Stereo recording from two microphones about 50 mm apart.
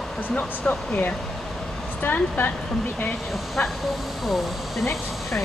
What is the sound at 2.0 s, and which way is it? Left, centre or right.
Speech, left.